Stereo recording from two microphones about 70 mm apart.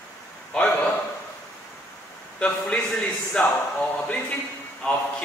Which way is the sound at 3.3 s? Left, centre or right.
Centre.